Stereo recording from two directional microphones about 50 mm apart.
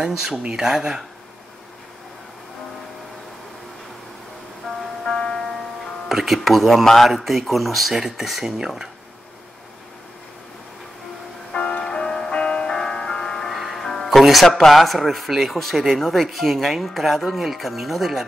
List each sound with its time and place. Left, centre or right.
0.0 s speech: centre
4.6 s music: centre
6.0 s speech: centre
11.5 s music: left
11.9 s music: centre
14.2 s speech: centre